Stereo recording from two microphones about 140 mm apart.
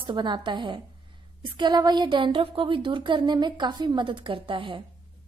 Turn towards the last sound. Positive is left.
turn(degrees=-35)  # may be behind; listen again after turning